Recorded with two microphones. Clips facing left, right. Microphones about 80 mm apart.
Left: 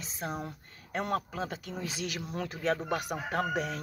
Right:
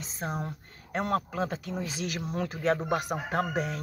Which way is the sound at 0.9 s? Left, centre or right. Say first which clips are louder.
Right 3 dB; right.